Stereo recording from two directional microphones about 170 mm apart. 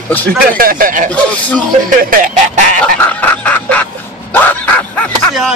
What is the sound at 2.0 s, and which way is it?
Speech, 55° right (ahead or behind).